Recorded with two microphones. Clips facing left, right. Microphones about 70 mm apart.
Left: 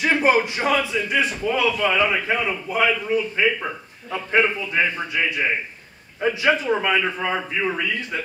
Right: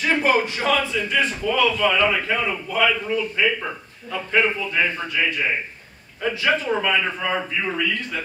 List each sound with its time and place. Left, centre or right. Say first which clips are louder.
0.0 s a man's voice: left 1 dB; centre